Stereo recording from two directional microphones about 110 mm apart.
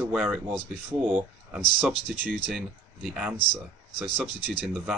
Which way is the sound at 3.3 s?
40° left (ahead or behind).